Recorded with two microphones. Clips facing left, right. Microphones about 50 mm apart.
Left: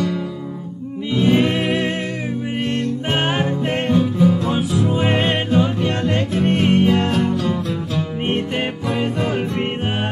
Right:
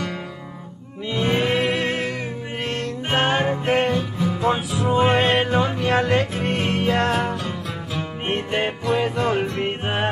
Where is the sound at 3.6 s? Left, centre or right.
Right.